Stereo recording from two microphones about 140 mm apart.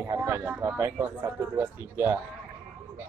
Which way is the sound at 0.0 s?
15° right (ahead or behind).